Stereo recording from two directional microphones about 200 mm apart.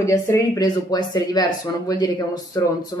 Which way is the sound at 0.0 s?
15° left (ahead or behind).